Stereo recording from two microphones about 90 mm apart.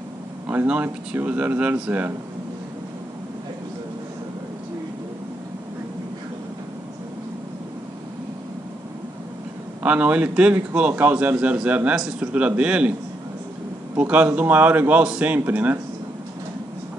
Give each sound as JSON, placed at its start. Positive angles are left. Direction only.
{"t": 0.5, "sound": "a man's voice", "side_deg": -15}
{"t": 9.8, "sound": "speech", "side_deg": -15}
{"t": 13.9, "sound": "a man's voice", "side_deg": -15}